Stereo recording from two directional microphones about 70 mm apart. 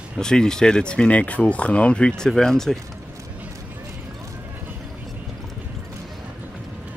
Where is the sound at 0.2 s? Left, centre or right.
Centre.